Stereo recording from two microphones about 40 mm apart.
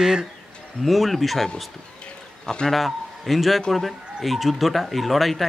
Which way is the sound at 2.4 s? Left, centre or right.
Centre.